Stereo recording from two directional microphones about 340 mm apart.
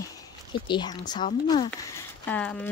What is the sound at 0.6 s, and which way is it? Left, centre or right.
Speech, centre.